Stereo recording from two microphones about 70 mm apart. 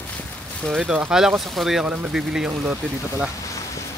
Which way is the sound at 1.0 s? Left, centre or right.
Centre.